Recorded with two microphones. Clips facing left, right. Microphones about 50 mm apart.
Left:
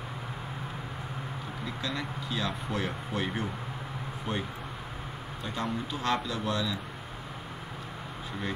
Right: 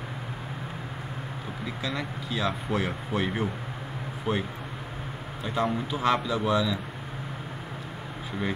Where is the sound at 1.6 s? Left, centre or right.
Centre.